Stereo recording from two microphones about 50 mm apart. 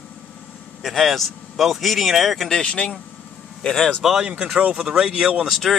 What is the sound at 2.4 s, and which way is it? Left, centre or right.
Speech, centre.